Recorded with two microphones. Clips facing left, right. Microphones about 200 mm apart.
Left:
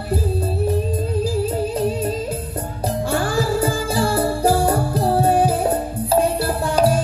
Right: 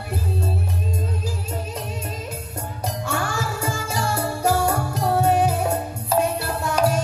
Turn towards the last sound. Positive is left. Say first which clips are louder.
# left 4 dB
turn(degrees=30)  # may be behind; listen again after turning